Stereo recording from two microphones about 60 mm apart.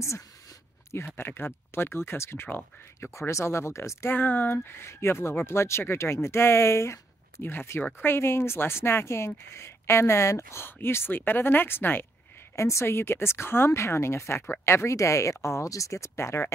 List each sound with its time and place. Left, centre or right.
0.9 s speech: left
3.3 s speech: left
4.1 s speech: left
10.6 s speech: left
12.5 s speech: left